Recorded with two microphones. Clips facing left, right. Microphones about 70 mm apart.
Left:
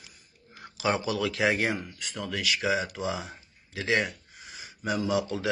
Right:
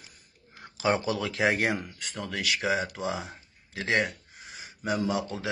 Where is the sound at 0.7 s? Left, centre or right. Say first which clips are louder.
Right 1 dB; right.